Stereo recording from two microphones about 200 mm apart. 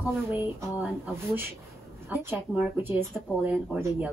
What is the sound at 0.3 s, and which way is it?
Speech, 10° right (ahead or behind).